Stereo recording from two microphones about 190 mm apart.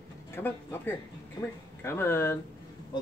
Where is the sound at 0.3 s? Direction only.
10° left (ahead or behind).